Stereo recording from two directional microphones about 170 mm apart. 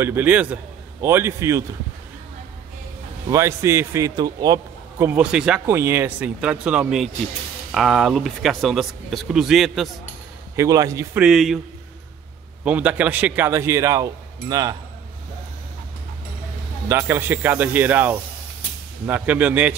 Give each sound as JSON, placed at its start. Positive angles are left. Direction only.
{"t": 0.0, "sound": "a man's voice", "side_deg": -10}
{"t": 3.3, "sound": "a man's voice", "side_deg": -15}
{"t": 10.5, "sound": "speech", "side_deg": -20}
{"t": 11.1, "sound": "speech", "side_deg": 0}
{"t": 12.6, "sound": "a man's voice", "side_deg": -10}
{"t": 16.9, "sound": "a man's voice", "side_deg": -10}